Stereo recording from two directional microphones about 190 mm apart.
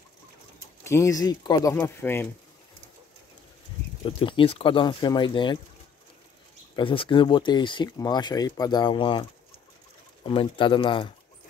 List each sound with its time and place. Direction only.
0.8 s speech: 15° left (ahead or behind)
4.0 s speech: 30° left (ahead or behind)
6.7 s speech: 25° left (ahead or behind)
10.2 s speech: 30° left (ahead or behind)